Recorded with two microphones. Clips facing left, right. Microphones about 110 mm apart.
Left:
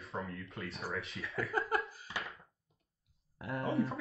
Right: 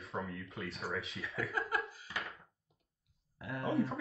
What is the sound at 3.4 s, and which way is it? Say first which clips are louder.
Speech: left 2 dB; 35° left (ahead or behind).